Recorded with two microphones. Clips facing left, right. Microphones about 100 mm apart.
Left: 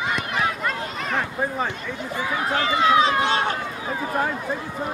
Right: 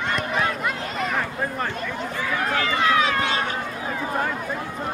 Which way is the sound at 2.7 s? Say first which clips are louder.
Left 4 dB; 25° left (ahead or behind).